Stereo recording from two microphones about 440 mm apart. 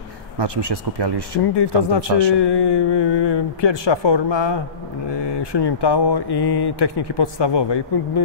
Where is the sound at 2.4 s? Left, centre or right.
Left.